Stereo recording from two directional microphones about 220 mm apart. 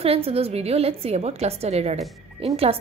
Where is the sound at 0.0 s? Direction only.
25° right (ahead or behind).